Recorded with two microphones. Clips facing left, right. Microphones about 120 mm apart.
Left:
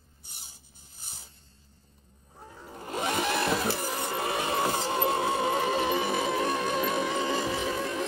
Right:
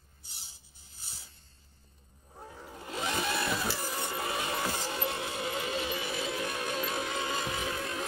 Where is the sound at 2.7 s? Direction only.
45° left (ahead or behind); by 3.5 s 65° left (ahead or behind).